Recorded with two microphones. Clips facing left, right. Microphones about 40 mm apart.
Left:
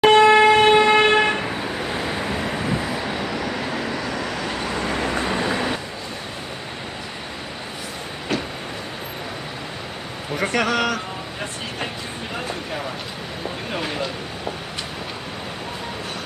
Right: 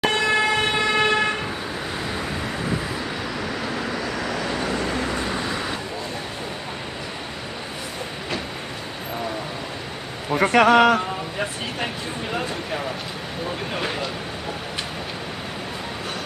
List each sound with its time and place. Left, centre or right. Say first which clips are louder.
0.1 s vehicle: left 8 dB; left
1.1 s toot: left 3 dB; centre
1.9 s vehicle: left 3 dB; centre
4.6 s vehicle: left 1 dB; centre
10.4 s speech: right 6 dB; centre
13.7 s vehicle: left 3 dB; centre